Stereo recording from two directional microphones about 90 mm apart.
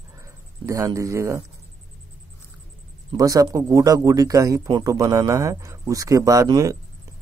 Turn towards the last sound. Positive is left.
turn(degrees=-40)  # may be behind; listen again after turning